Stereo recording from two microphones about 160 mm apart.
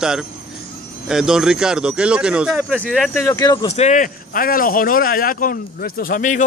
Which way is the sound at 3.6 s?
45° left (ahead or behind).